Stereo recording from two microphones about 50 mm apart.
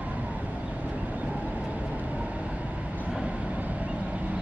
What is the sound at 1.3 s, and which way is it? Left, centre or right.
Vehicle, right.